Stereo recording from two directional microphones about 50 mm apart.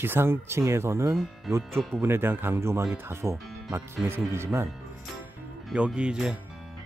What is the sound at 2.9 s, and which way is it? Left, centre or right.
Speech, right.